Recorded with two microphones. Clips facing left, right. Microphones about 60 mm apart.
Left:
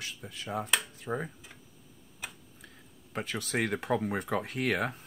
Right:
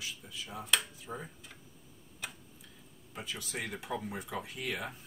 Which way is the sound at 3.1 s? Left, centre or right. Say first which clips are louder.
Left 8 dB; left.